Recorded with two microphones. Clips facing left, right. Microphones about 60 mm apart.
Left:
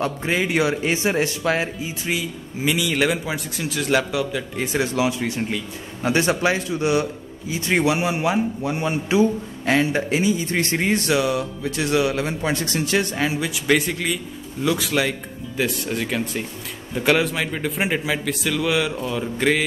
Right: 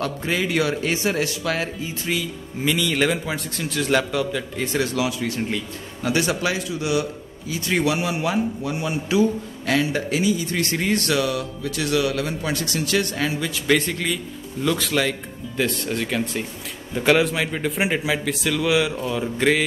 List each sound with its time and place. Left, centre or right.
0.0 s a man's voice: centre
1.8 s speech: centre
4.7 s a man's voice: left; by 19.6 s centre